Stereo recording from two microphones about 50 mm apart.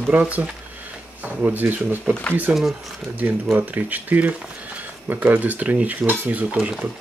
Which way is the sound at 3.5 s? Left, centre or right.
Right.